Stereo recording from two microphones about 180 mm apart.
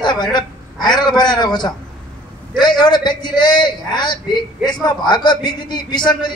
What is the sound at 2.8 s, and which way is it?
A man's voice, 25° left (ahead or behind).